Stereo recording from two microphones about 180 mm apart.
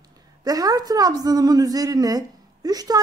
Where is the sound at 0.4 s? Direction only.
20° right (ahead or behind).